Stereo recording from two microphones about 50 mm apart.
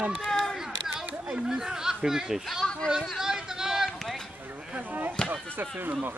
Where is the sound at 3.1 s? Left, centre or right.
Centre.